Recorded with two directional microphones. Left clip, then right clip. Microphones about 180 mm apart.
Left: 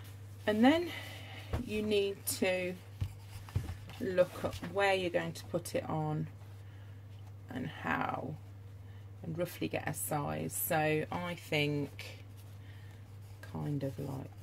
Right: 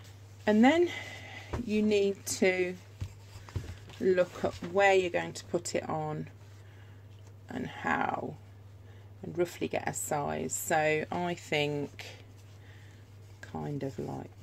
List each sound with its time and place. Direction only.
0.5 s speech: 40° right (ahead or behind)
4.0 s speech: 50° right (ahead or behind)
7.5 s speech: 40° right (ahead or behind)
9.4 s speech: 40° right (ahead or behind)
13.4 s stir: 45° right (ahead or behind)